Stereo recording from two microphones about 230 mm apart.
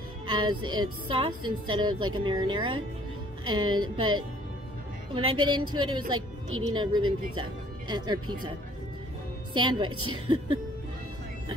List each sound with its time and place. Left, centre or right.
0.3 s a woman's voice: right
9.5 s a woman's voice: right
9.8 s a woman's voice: right